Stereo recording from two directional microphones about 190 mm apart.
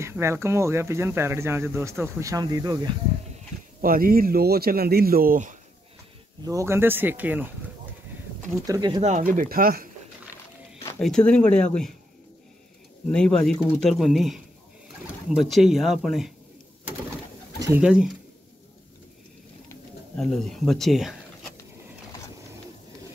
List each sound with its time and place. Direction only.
0.0 s speech: 15° right (ahead or behind)
3.8 s speech: 50° right (ahead or behind)
6.4 s speech: 15° right (ahead or behind)
9.0 s speech: 40° right (ahead or behind)
11.0 s speech: 5° left (ahead or behind)
13.1 s speech: 5° left (ahead or behind)
15.5 s speech: centre (ahead or behind)
17.7 s speech: 5° right (ahead or behind)
20.2 s speech: 5° left (ahead or behind)